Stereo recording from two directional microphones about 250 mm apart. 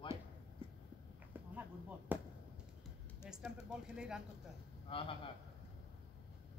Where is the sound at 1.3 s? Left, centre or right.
Centre.